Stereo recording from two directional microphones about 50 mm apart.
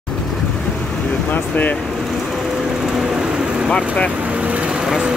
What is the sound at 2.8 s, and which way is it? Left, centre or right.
Vehicle, centre.